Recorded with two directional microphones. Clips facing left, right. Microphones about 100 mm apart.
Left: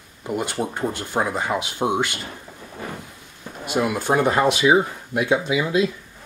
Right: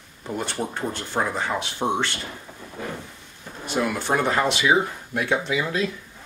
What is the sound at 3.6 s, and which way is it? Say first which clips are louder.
Speech: left 3 dB; 15° left (ahead or behind).